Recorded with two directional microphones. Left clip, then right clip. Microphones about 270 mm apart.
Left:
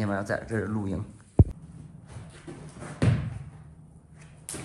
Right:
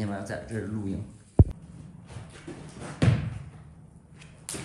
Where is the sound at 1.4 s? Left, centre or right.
Left.